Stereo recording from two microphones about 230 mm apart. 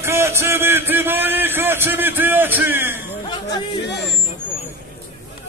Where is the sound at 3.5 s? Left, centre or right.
Left.